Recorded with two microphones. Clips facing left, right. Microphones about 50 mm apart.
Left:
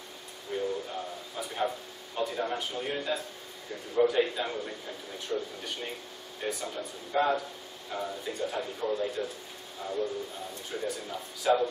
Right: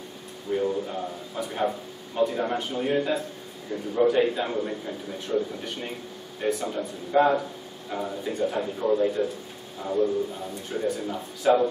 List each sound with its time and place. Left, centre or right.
0.6 s a sound: centre
1.5 s a man's voice: centre
10.7 s a man's voice: centre